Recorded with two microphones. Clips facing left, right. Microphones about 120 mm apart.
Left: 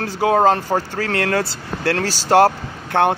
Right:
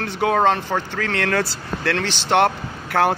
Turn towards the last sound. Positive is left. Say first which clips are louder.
# left 2 dB
turn(degrees=25)  # may be behind; listen again after turning